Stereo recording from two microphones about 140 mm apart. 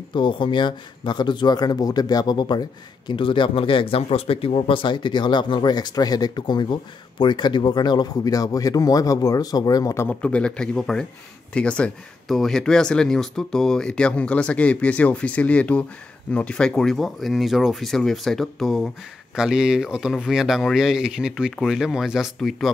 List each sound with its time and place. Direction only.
0.1 s speech: 35° left (ahead or behind)
10.0 s speech: 10° left (ahead or behind)